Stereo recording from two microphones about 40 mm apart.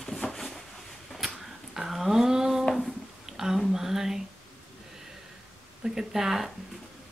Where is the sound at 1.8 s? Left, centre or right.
Centre.